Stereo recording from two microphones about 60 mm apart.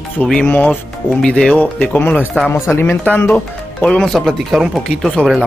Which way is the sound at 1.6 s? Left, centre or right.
Left.